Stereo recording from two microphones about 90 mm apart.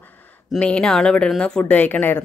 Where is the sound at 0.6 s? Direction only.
10° left (ahead or behind).